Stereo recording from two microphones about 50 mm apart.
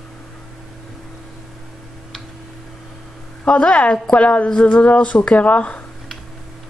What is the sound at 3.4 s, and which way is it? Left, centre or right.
A woman's voice, left.